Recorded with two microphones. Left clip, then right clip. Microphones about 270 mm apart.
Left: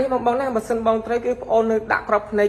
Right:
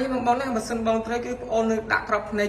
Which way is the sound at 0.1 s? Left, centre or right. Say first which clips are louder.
Left 4 dB; centre.